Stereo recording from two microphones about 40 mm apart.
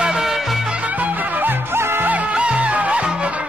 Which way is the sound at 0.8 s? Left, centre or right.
Right.